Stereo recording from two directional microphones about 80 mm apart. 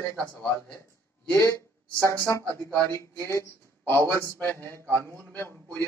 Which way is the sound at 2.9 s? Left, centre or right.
Left.